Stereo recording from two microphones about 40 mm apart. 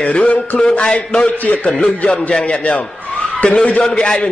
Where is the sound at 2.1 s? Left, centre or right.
Left.